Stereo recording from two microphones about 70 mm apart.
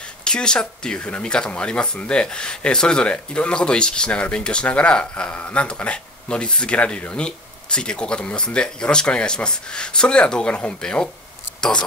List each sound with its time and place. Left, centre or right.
0.2 s speech: centre